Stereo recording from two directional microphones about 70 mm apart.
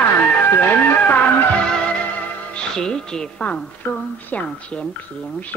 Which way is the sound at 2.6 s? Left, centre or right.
Centre.